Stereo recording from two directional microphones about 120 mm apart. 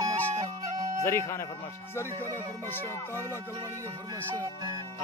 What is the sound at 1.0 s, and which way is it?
Speech, 25° left (ahead or behind).